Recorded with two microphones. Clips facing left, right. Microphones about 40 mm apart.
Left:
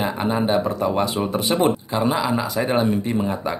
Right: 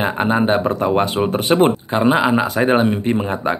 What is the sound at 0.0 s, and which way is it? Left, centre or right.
Speech, right.